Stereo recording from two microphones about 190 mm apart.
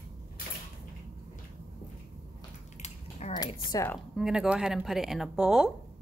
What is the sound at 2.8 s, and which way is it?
Typing, 35° left (ahead or behind).